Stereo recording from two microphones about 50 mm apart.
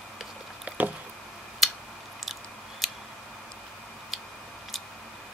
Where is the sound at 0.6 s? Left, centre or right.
Right.